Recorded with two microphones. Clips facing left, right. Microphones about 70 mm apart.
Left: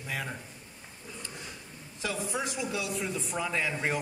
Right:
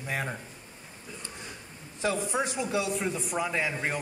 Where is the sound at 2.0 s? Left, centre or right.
Right.